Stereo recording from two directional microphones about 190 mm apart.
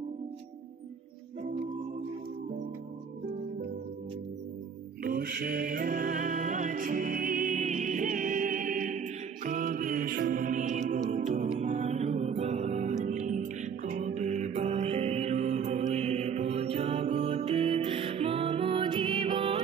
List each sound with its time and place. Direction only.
5.0 s music: 55° right (ahead or behind); by 19.6 s 30° right (ahead or behind)